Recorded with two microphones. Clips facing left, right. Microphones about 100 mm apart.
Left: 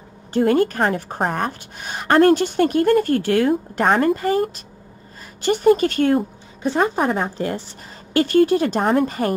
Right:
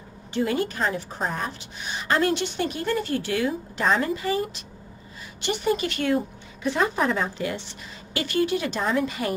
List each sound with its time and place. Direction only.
0.3 s a woman's voice: 50° left (ahead or behind)